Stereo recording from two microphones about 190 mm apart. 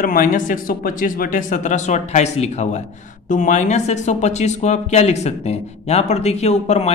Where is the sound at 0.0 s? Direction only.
45° left (ahead or behind).